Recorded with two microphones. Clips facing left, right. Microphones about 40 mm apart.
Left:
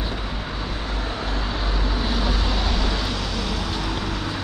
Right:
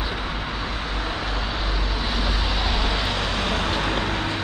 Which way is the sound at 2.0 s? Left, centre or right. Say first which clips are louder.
Even; centre.